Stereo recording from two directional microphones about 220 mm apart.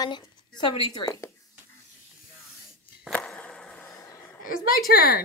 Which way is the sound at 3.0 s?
5° left (ahead or behind).